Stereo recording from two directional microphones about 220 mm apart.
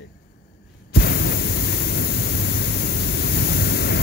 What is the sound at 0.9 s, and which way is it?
White noise, 45° left (ahead or behind).